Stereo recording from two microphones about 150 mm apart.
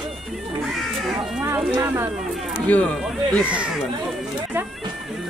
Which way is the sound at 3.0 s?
5° right (ahead or behind).